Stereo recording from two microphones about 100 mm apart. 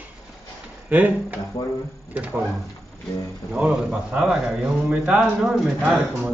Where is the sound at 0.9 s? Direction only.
15° right (ahead or behind).